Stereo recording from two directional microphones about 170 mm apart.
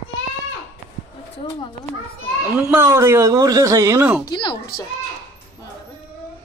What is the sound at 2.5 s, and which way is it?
Speech, 15° right (ahead or behind).